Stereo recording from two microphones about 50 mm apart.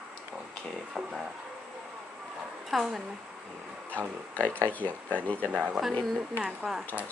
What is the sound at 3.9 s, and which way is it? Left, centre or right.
Speech, left.